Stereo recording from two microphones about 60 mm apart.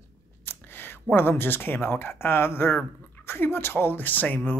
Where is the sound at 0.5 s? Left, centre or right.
Left.